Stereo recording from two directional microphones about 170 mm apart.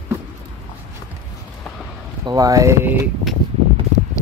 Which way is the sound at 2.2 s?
20° right (ahead or behind).